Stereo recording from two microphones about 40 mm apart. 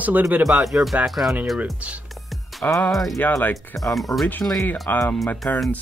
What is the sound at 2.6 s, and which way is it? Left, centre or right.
Speech, left.